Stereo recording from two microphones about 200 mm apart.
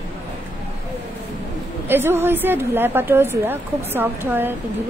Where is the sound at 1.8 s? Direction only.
10° right (ahead or behind).